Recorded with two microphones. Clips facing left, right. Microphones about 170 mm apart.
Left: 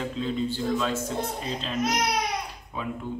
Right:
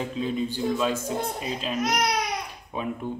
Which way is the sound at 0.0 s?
15° right (ahead or behind).